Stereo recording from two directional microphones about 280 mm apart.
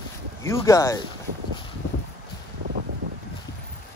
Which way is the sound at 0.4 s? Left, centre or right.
Centre.